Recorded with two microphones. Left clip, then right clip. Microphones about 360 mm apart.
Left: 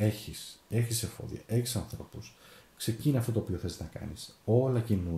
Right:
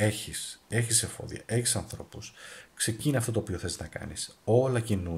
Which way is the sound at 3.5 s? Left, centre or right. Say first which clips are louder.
Right 3 dB; right.